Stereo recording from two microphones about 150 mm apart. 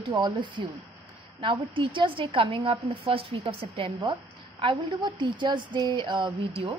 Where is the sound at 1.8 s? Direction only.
35° right (ahead or behind).